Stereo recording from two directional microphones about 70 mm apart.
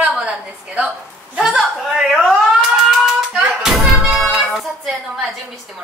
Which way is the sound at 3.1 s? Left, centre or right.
Centre.